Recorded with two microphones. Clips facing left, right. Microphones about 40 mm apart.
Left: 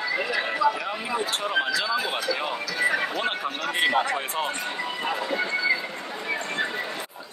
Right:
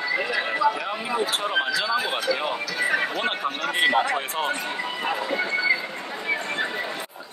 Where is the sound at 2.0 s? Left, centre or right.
Right.